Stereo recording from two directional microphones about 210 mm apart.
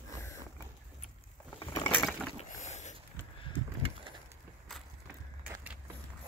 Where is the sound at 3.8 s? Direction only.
25° right (ahead or behind).